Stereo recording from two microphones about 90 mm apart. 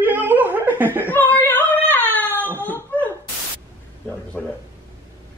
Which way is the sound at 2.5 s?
20° left (ahead or behind).